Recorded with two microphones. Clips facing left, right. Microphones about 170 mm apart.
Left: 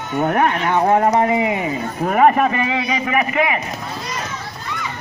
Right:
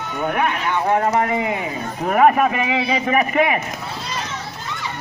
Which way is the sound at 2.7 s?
30° right (ahead or behind).